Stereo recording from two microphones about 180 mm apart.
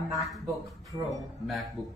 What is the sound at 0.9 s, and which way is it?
Speech, 15° right (ahead or behind).